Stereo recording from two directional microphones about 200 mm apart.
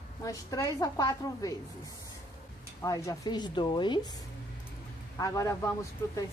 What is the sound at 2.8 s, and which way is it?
Speech, 15° left (ahead or behind).